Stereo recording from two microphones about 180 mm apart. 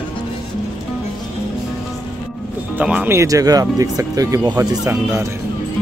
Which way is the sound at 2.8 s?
5° right (ahead or behind).